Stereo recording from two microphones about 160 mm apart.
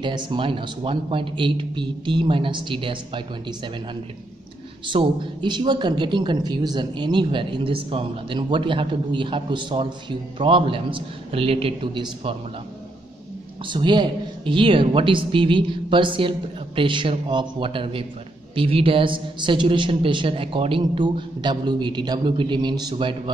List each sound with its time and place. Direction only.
0.0 s a man's voice: 30° right (ahead or behind)
4.8 s a man's voice: 30° right (ahead or behind)
13.7 s a man's voice: 30° right (ahead or behind)